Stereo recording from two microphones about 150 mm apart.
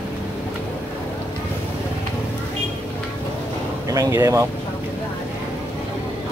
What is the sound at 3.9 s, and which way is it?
Speech, 20° right (ahead or behind).